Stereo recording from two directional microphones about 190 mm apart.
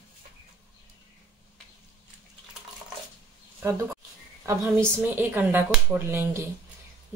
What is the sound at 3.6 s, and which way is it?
Speech, 15° right (ahead or behind).